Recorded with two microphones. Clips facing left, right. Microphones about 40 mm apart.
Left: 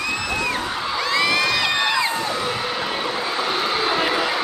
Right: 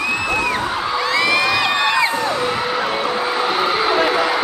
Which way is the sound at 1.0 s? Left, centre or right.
Centre.